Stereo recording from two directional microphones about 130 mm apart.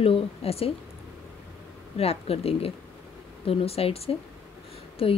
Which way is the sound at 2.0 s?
50° left (ahead or behind).